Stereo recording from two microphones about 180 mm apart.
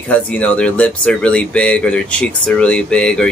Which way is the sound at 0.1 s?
5° left (ahead or behind).